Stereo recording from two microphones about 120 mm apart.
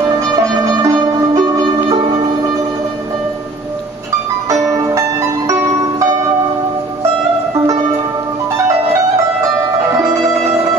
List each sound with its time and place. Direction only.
0.4 s music: 30° right (ahead or behind)
4.5 s music: 25° right (ahead or behind)